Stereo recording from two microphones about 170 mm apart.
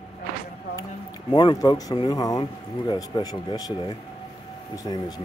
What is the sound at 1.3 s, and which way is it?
Speech, 25° left (ahead or behind).